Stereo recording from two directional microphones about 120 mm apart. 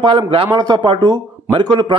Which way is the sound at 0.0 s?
45° right (ahead or behind).